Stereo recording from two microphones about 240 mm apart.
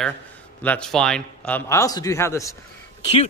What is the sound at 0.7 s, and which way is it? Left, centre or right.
Speech, centre.